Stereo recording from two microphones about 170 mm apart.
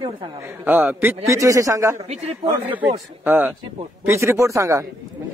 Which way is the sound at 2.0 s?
30° right (ahead or behind).